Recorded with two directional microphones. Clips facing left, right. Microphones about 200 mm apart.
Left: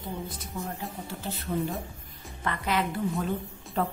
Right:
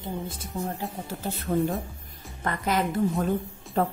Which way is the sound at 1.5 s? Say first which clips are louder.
Right 5 dB; 50° right (ahead or behind).